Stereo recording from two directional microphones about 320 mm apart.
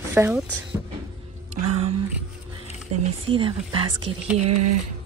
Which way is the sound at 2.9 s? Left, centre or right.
Right.